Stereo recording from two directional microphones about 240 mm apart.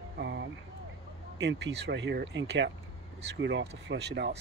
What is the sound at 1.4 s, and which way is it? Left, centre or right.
Speech, right.